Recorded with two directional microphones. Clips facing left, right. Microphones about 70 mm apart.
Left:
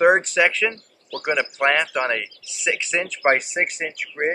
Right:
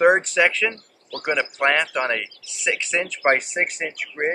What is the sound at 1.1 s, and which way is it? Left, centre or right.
Speech, right.